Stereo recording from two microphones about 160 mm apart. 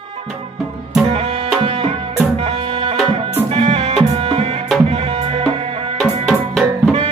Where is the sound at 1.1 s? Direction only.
35° right (ahead or behind).